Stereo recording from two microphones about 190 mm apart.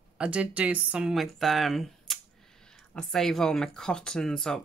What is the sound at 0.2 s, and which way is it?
Speech, 5° right (ahead or behind).